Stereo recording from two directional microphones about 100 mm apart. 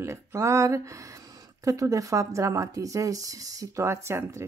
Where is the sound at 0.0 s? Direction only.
30° right (ahead or behind).